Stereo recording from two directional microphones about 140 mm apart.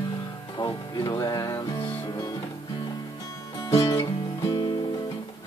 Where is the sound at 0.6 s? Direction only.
30° left (ahead or behind).